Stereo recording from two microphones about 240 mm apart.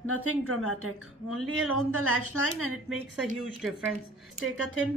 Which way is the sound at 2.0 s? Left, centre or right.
Right.